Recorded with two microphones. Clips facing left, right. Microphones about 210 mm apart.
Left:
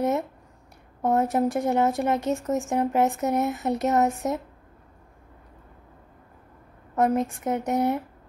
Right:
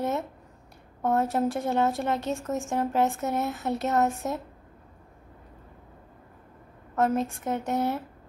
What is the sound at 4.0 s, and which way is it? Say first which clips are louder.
Speech: left 3 dB; 20° left (ahead or behind).